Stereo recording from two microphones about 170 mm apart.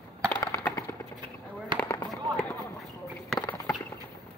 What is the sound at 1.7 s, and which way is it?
Firecracker, 15° left (ahead or behind).